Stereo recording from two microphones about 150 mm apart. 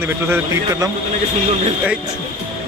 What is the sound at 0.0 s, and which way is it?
Speech, 15° right (ahead or behind).